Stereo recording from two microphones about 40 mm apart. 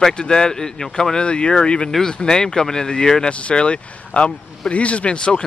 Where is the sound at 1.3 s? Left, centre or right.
Left.